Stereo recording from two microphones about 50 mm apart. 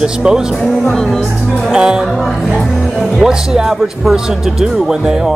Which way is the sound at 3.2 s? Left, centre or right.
Centre.